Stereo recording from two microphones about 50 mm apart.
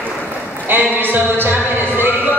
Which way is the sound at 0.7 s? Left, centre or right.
Right.